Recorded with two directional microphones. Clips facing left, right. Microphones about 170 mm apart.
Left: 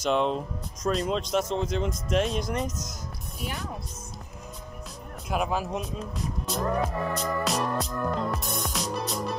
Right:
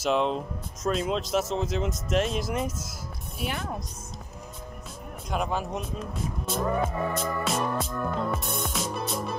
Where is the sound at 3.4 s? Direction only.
70° right (ahead or behind).